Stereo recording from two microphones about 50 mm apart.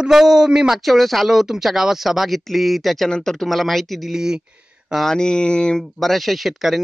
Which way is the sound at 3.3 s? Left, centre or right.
Centre.